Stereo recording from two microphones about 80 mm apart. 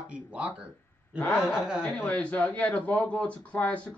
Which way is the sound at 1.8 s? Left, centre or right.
Centre.